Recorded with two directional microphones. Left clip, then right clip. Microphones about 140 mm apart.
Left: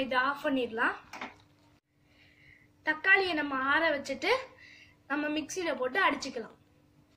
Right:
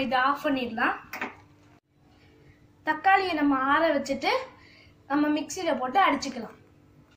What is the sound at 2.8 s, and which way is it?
A woman's voice, 85° left.